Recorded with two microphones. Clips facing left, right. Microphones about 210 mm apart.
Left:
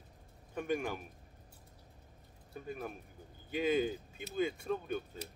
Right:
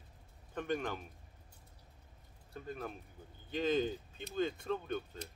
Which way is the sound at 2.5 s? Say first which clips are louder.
Left 1 dB; 10° left (ahead or behind).